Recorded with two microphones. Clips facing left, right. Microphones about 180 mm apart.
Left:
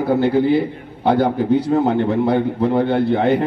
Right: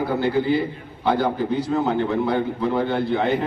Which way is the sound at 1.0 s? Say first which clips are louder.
Left 5 dB; 55° left (ahead or behind).